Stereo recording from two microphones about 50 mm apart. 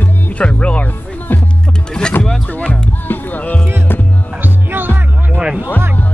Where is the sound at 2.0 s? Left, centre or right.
Centre.